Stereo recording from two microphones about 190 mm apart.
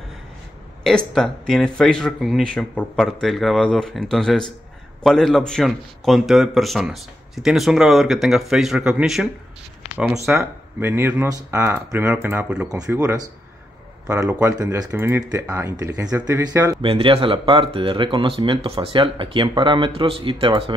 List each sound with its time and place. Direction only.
0.8 s a man's voice: centre (ahead or behind); by 13.0 s 20° right (ahead or behind)
14.0 s speech: 15° right (ahead or behind)
16.0 s a man's voice: 5° right (ahead or behind)
16.8 s speech: 30° right (ahead or behind)